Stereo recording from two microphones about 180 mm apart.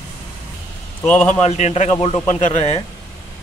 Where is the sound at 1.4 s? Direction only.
40° left (ahead or behind).